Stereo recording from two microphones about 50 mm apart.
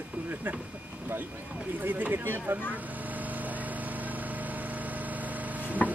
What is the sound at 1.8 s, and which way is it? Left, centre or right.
Speech, right.